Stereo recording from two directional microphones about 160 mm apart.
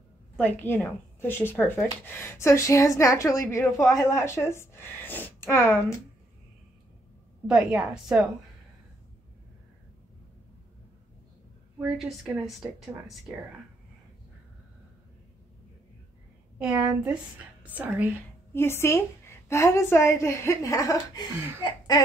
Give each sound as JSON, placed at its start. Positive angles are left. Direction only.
{"t": 0.4, "sound": "a woman's voice", "side_deg": 10}
{"t": 7.4, "sound": "a woman's voice", "side_deg": -5}
{"t": 11.8, "sound": "a woman's voice", "side_deg": 0}
{"t": 16.5, "sound": "a woman's voice", "side_deg": -10}
{"t": 18.5, "sound": "a woman's voice", "side_deg": 15}
{"t": 21.6, "sound": "a sound", "side_deg": 25}